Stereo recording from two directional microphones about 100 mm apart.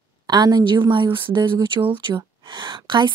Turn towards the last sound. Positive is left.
turn(degrees=-50)  # may be behind; listen again after turning